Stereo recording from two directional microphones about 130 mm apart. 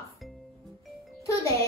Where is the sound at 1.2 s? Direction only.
25° left (ahead or behind).